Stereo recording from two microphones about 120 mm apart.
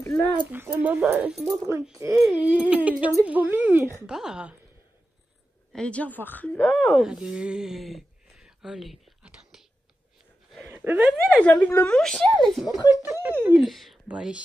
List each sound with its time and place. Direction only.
0.5 s speech: 15° right (ahead or behind)
1.7 s speech: 25° right (ahead or behind)
2.2 s speech: 10° right (ahead or behind)
4.0 s speech: 5° right (ahead or behind)
5.7 s speech: 10° left (ahead or behind)
6.6 s speech: centre (ahead or behind)
10.7 s speech: 15° right (ahead or behind)
11.3 s speech: 10° left (ahead or behind)
12.0 s speech: 5° left (ahead or behind)
13.0 s speech: 20° right (ahead or behind)
13.6 s speech: centre (ahead or behind)